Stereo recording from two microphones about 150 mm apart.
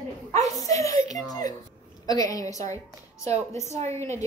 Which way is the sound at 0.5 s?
25° left (ahead or behind).